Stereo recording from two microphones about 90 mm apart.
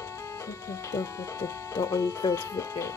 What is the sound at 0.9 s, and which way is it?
Speech, 30° left (ahead or behind).